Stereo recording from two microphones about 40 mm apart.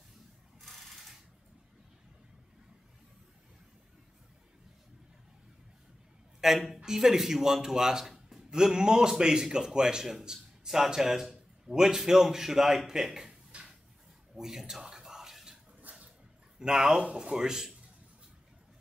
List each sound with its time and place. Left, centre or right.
0.6 s mechanisms: centre
6.4 s a woman's voice: centre
13.3 s a sound: right
14.3 s a sound: centre
15.9 s dog: right
16.5 s a man's voice: centre
17.0 s speech: right
17.4 s a man's voice: centre